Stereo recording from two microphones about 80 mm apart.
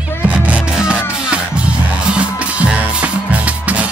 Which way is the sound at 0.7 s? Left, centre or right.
Centre.